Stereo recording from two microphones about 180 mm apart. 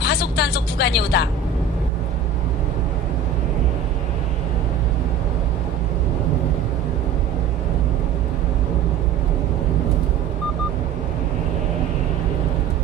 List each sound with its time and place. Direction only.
0.0 s speech: 65° left (ahead or behind)